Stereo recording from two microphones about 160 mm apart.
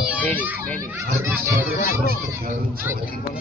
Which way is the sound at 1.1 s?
15° right (ahead or behind).